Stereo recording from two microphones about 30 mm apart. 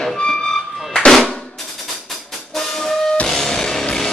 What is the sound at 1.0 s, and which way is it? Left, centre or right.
Drum, left.